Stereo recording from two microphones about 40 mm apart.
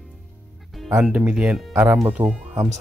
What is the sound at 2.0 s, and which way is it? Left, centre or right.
Speech, right.